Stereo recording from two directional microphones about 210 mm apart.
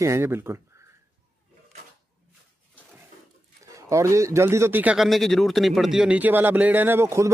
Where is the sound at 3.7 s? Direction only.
15° right (ahead or behind).